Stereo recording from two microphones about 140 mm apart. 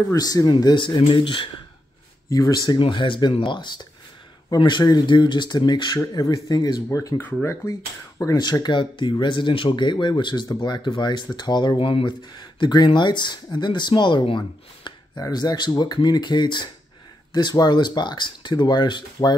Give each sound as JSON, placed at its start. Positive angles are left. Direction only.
{"t": 0.1, "sound": "speech", "side_deg": 25}
{"t": 2.2, "sound": "speech", "side_deg": 25}